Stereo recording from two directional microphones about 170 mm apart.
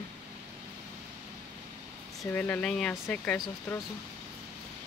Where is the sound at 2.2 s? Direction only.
10° left (ahead or behind).